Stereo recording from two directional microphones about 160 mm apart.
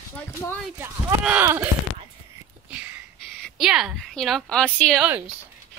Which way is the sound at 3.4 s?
5° right (ahead or behind).